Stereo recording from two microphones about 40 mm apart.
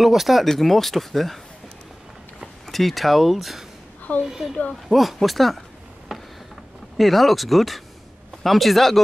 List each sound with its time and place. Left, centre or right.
0.0 s speech: centre
2.6 s a child's voice: centre
6.1 s a sound: centre
7.0 s speech: centre